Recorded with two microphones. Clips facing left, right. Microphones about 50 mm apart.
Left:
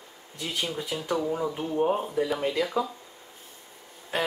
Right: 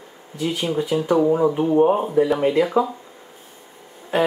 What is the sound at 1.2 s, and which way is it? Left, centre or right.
Speech, right.